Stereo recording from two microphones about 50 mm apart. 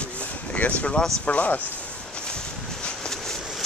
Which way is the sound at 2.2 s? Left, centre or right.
Centre.